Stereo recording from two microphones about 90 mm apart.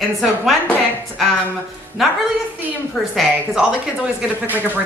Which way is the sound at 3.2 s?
5° right (ahead or behind).